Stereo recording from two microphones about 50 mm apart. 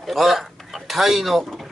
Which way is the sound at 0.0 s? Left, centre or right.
Centre.